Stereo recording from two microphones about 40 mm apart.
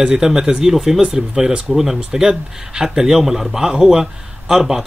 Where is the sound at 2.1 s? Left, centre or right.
Centre.